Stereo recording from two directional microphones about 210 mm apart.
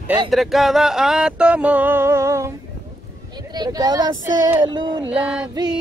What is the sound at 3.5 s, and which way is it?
Speech, 20° right (ahead or behind).